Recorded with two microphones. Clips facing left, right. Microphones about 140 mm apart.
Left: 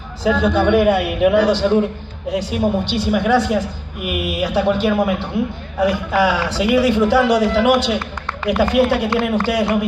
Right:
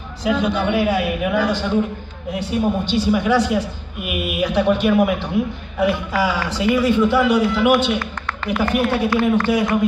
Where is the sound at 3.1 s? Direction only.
55° left (ahead or behind).